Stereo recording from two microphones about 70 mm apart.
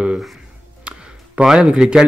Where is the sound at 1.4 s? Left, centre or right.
Centre.